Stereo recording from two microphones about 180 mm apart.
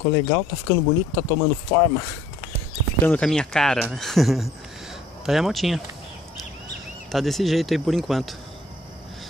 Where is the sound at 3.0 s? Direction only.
5° left (ahead or behind).